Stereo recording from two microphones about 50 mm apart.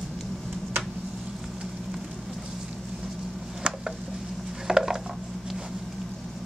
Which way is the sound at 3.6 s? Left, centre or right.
Centre.